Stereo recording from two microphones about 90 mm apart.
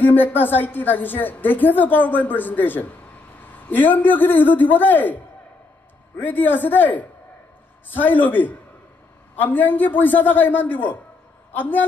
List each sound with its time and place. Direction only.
0.0 s a woman's voice: 20° left (ahead or behind)